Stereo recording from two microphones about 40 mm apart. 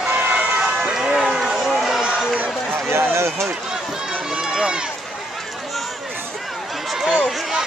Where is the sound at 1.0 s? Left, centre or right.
Centre.